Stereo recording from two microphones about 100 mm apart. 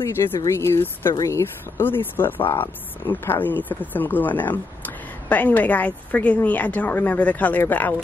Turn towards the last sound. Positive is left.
turn(degrees=20)  # may be behind; listen again after turning